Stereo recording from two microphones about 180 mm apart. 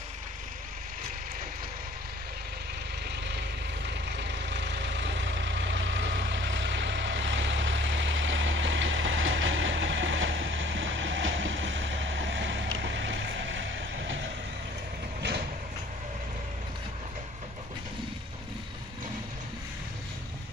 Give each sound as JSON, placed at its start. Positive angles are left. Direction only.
{"t": 3.3, "sound": "vehicle", "side_deg": -70}